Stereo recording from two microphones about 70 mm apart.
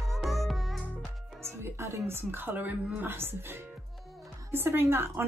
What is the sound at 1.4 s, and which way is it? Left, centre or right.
Speech, right.